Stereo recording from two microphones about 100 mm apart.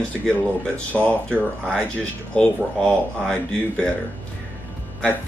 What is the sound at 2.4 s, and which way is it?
Speech, 5° left (ahead or behind).